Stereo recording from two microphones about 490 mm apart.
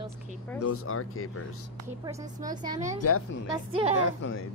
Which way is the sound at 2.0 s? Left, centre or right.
Centre.